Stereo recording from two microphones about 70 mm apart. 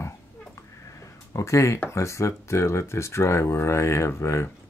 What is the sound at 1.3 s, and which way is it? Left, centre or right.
Speech, left.